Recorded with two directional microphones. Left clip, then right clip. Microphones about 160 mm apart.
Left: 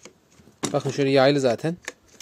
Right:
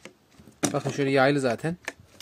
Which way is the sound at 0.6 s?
25° left (ahead or behind).